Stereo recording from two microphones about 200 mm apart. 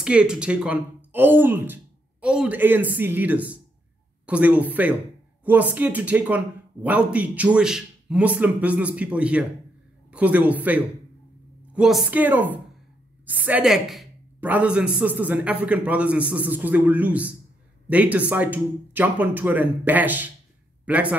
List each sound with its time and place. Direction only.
0.0 s speech: 5° right (ahead or behind)